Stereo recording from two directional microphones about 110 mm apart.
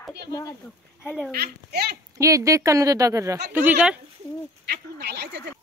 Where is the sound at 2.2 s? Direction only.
30° right (ahead or behind).